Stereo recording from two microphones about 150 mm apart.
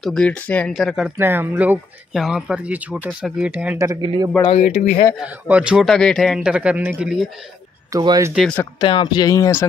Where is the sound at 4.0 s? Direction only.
35° right (ahead or behind).